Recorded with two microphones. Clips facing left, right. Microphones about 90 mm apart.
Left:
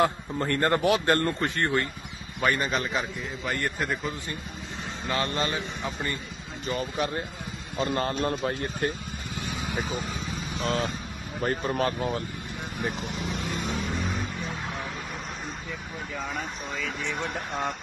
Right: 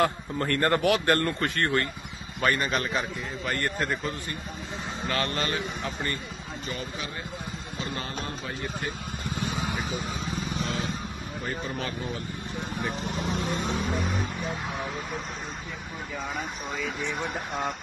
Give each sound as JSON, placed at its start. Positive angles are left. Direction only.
{"t": 0.0, "sound": "a man's voice", "side_deg": 20}
{"t": 5.0, "sound": "a man's voice", "side_deg": 20}
{"t": 5.8, "sound": "speech", "side_deg": 0}
{"t": 6.7, "sound": "speech", "side_deg": 45}
{"t": 10.6, "sound": "speech", "side_deg": 40}
{"t": 13.0, "sound": "vehicle", "side_deg": -35}
{"t": 16.3, "sound": "speech", "side_deg": -5}